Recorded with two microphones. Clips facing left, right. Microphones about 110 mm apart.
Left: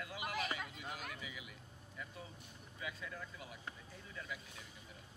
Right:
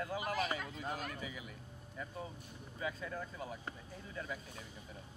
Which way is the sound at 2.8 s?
40° right (ahead or behind).